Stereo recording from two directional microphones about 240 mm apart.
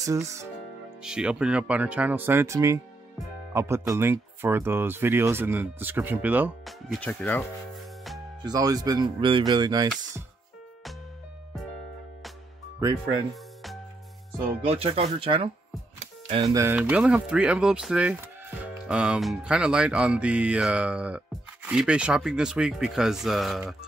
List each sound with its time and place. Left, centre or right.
0.0 s speech: centre
3.8 s speech: centre
8.5 s speech: centre
14.6 s speech: right
16.0 s music: right
16.5 s speech: centre